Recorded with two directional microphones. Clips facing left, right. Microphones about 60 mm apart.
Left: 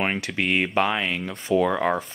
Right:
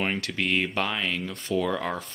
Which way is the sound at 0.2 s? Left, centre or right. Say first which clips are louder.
Left 3 dB; left.